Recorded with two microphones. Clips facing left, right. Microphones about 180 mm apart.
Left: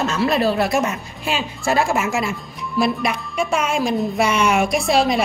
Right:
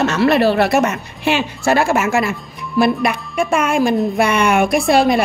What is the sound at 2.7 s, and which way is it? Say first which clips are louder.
A woman's voice: right 5 dB; 55° right (ahead or behind).